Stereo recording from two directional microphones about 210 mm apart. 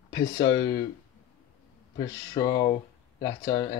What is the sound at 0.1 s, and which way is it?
Speech, 15° left (ahead or behind).